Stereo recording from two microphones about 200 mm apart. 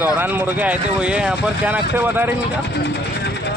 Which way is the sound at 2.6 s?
60° left (ahead or behind).